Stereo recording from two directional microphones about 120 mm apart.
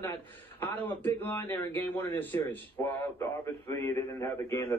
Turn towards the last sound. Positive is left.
turn(degrees=25)  # may be behind; listen again after turning